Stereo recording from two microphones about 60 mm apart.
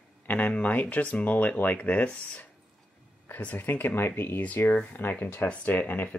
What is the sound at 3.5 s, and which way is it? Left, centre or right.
Speech, left.